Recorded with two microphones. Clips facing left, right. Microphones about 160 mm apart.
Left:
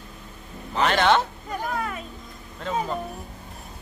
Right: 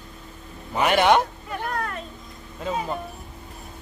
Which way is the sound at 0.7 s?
10° right (ahead or behind).